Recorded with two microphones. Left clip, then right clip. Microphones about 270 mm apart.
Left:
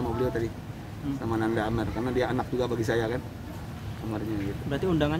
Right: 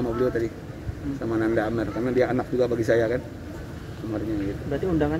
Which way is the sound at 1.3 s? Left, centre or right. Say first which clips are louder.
Right 4 dB; centre.